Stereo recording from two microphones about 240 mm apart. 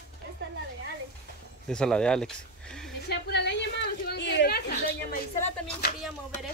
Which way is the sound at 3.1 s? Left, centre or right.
Left.